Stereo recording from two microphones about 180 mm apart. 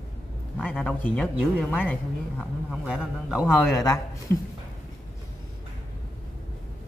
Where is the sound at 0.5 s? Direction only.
5° left (ahead or behind).